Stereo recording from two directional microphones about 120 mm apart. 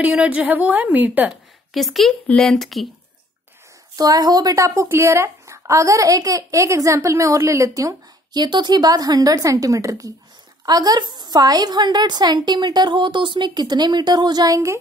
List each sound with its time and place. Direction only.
0.0 s a woman's voice: 10° right (ahead or behind)
1.7 s speech: centre (ahead or behind)
3.9 s a woman's voice: 30° right (ahead or behind)